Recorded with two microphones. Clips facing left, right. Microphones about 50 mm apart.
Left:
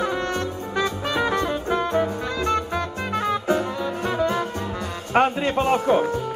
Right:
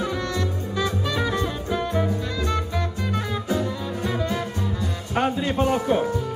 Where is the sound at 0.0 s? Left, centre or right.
Left.